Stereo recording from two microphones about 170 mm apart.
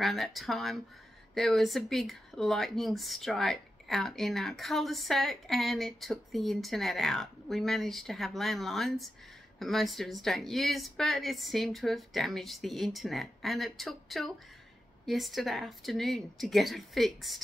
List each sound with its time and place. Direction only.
0.0 s speech: centre (ahead or behind)